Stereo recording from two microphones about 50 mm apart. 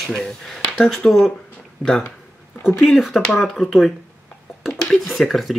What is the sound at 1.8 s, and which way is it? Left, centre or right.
Mantra, centre.